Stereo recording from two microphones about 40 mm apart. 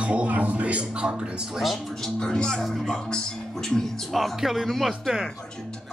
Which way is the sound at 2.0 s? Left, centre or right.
Centre.